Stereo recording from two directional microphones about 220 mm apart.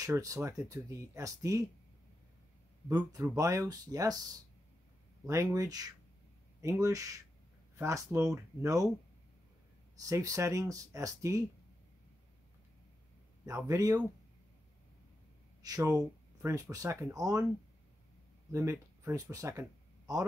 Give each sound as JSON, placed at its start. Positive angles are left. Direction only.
{"t": 0.0, "sound": "speech", "side_deg": -15}
{"t": 3.1, "sound": "speech", "side_deg": -15}
{"t": 5.2, "sound": "speech", "side_deg": -15}
{"t": 9.9, "sound": "speech", "side_deg": -15}
{"t": 13.5, "sound": "speech", "side_deg": -15}
{"t": 15.6, "sound": "speech", "side_deg": -15}
{"t": 18.5, "sound": "speech", "side_deg": -10}